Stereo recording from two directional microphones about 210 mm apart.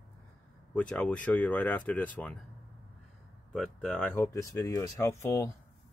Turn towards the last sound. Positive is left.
turn(degrees=15)  # may be behind; listen again after turning